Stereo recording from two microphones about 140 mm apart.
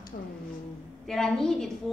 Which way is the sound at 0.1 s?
65° left (ahead or behind).